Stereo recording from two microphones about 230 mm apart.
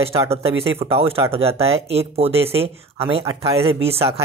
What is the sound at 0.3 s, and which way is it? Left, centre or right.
Speech, right.